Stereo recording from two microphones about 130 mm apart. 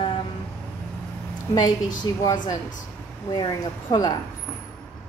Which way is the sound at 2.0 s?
30° left (ahead or behind).